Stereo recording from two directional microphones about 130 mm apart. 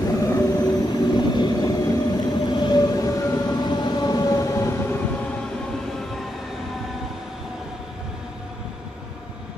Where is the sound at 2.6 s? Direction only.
30° left (ahead or behind).